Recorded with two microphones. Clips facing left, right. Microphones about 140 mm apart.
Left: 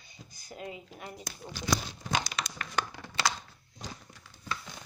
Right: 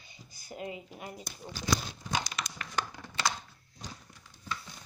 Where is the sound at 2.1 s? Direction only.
85° left.